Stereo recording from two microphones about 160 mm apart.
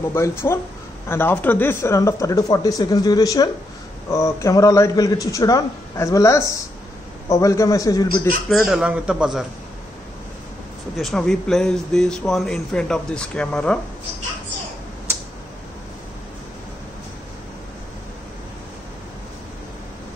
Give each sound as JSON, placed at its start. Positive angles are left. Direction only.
{"t": 0.1, "sound": "speech", "side_deg": 15}
{"t": 8.5, "sound": "a man's voice", "side_deg": 0}
{"t": 11.0, "sound": "a man's voice", "side_deg": 0}